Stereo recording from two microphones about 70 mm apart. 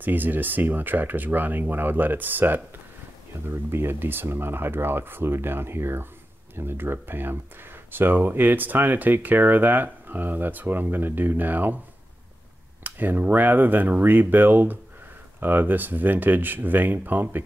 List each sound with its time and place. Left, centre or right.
0.0 s speech: right
12.8 s speech: right